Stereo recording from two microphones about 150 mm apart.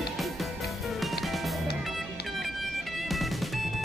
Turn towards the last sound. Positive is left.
turn(degrees=0)  # may be behind; listen again after turning